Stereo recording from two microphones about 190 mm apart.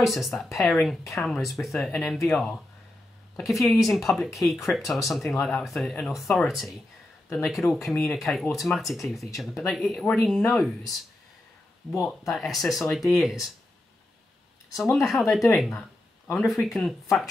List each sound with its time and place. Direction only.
0.0 s speech: centre (ahead or behind)
12.0 s speech: centre (ahead or behind)
14.8 s speech: centre (ahead or behind)